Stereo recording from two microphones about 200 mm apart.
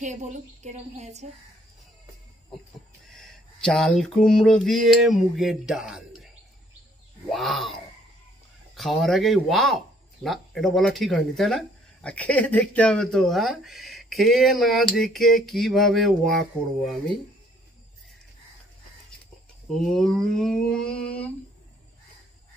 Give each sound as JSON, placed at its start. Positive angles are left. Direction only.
{"t": 0.0, "sound": "a woman's voice", "side_deg": -35}
{"t": 3.1, "sound": "speech", "side_deg": 0}
{"t": 7.2, "sound": "speech", "side_deg": 0}
{"t": 19.7, "sound": "speech", "side_deg": 0}